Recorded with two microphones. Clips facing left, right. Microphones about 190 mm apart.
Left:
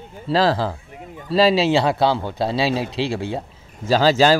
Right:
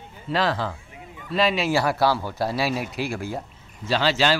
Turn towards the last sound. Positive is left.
turn(degrees=40)  # may be behind; listen again after turning